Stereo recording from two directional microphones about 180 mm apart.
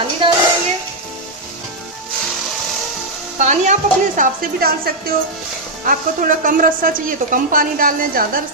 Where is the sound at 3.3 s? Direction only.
45° right (ahead or behind).